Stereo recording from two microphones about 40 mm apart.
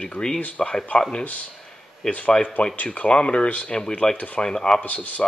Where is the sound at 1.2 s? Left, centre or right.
Left; by 4.7 s centre.